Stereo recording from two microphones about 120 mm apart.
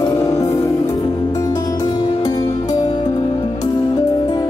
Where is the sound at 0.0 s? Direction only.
30° left (ahead or behind).